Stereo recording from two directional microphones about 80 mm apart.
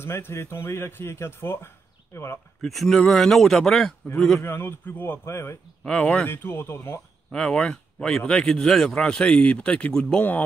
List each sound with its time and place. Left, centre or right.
0.0 s speech: left
2.6 s speech: centre
4.4 s a man's voice: left
5.9 s speech: centre
6.2 s a man's voice: left
7.2 s speech: centre